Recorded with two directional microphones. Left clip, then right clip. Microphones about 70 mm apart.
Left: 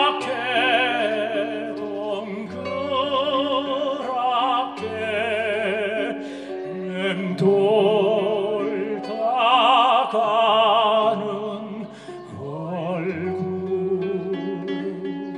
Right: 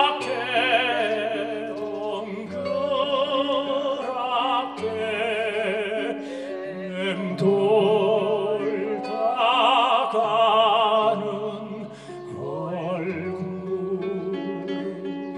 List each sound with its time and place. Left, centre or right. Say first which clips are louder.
0.0 s music: left 1 dB; left
2.7 s music: left 1 dB; left